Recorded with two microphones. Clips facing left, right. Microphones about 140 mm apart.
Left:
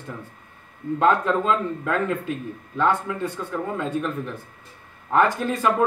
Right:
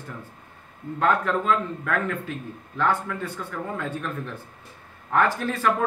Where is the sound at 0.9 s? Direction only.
20° left (ahead or behind).